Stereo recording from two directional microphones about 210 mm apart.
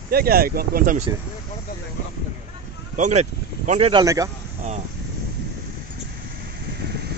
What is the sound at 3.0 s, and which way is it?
Speech, 35° right (ahead or behind).